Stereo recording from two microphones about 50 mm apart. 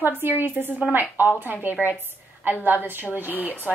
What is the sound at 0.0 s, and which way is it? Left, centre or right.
A woman's voice, right.